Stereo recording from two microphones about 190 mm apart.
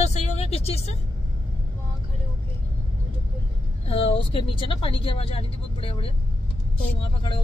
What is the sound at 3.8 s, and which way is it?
Speech, 30° left (ahead or behind).